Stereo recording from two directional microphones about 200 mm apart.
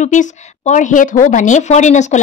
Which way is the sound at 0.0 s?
40° left (ahead or behind).